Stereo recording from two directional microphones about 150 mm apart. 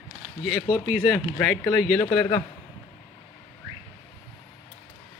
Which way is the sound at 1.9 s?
20° left (ahead or behind).